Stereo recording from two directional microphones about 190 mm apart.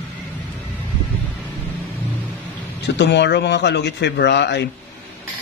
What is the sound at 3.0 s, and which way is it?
Speech, 65° left (ahead or behind).